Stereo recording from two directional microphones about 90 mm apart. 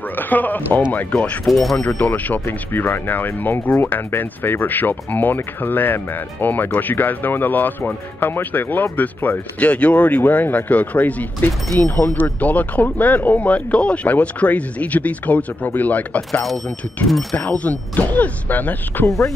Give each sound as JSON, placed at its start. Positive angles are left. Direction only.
{"t": 0.1, "sound": "speech", "side_deg": 20}
{"t": 1.4, "sound": "speech", "side_deg": 0}
{"t": 1.8, "sound": "speech", "side_deg": 15}
{"t": 17.1, "sound": "speech", "side_deg": 0}
{"t": 17.4, "sound": "speech", "side_deg": 20}